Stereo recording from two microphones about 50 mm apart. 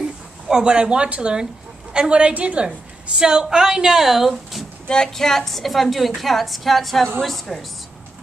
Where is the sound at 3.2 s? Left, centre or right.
Centre.